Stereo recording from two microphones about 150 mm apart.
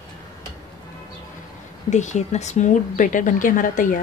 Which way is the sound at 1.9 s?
50° left (ahead or behind).